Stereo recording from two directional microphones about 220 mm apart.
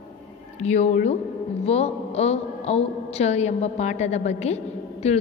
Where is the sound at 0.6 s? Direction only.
30° left (ahead or behind).